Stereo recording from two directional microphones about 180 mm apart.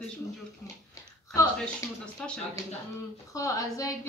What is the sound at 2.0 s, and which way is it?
Speech, 5° left (ahead or behind).